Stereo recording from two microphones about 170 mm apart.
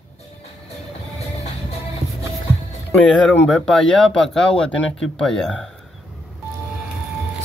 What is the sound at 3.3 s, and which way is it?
Speech, 5° left (ahead or behind).